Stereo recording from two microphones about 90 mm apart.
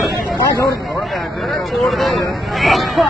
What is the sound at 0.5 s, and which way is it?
Speech, 40° left (ahead or behind).